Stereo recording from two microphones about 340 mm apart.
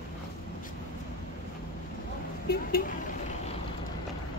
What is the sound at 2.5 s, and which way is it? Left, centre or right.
Vehicle, left.